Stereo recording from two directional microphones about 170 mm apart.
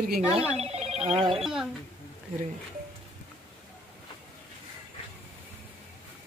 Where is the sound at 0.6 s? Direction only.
40° right (ahead or behind).